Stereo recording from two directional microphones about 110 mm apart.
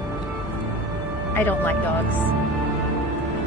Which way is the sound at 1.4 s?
15° left (ahead or behind).